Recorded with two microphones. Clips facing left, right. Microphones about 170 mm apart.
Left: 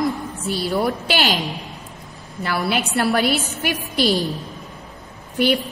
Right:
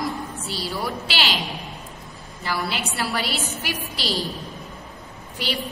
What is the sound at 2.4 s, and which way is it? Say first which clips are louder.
A woman's voice: left 5 dB; 60° left (ahead or behind).